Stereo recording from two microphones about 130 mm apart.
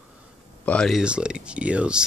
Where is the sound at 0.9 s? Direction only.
5° right (ahead or behind).